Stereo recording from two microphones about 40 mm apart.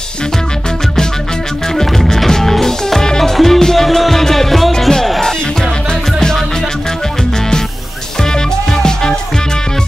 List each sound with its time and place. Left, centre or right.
1.7 s music: centre
8.2 s music: centre